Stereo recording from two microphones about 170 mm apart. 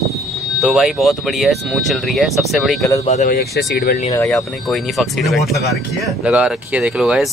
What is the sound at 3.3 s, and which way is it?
Speech, 70° left (ahead or behind).